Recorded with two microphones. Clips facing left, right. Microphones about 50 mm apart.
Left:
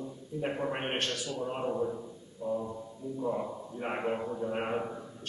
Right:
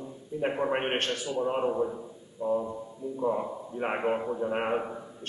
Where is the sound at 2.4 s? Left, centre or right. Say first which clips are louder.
Right 5 dB; centre.